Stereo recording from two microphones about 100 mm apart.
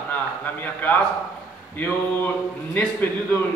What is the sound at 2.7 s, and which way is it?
Speech, 20° left (ahead or behind).